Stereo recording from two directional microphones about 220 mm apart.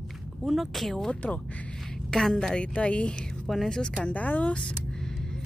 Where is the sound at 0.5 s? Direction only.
Centre (ahead or behind).